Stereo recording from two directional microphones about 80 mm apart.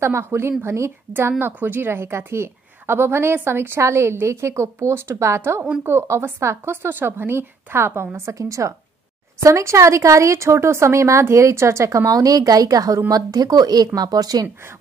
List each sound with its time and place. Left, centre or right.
0.0 s a woman's voice: right